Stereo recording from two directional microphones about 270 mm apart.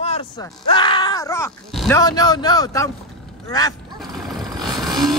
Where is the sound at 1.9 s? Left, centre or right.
Centre.